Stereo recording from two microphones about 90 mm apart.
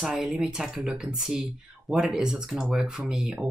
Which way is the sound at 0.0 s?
5° right (ahead or behind).